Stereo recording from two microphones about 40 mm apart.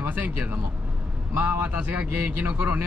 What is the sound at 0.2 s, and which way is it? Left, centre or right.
Speech, right.